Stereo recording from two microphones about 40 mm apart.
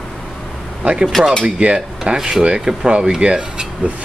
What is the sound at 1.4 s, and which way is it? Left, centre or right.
Speech, right.